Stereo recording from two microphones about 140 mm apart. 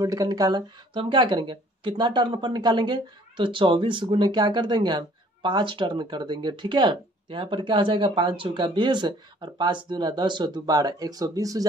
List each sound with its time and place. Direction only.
0.0 s speech: 25° right (ahead or behind)